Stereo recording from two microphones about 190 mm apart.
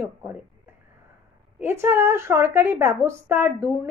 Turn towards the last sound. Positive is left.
turn(degrees=-10)  # may be behind; listen again after turning